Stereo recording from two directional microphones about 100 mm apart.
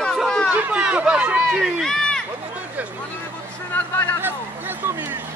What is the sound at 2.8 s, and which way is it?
Vehicle, 15° right (ahead or behind).